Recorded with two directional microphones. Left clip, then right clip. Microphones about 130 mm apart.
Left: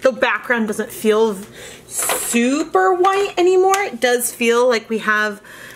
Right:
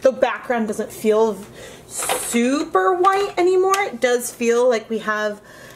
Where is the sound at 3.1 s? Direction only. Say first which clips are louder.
Left 2 dB; 25° left (ahead or behind).